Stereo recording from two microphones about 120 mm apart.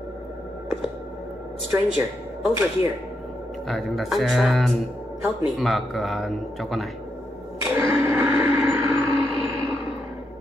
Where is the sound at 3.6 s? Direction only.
Centre (ahead or behind).